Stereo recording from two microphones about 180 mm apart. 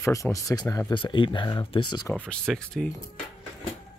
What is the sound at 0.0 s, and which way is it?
Speech, 15° left (ahead or behind).